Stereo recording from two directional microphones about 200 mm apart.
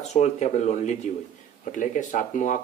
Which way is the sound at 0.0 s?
35° left (ahead or behind).